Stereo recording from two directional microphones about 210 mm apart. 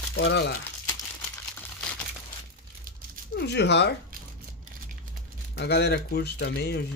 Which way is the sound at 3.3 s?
55° left (ahead or behind).